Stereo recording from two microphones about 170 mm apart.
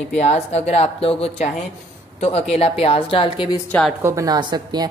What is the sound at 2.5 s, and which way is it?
Speech, 35° left (ahead or behind).